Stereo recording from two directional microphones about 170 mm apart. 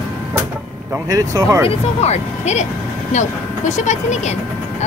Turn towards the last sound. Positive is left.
turn(degrees=45)  # may be behind; listen again after turning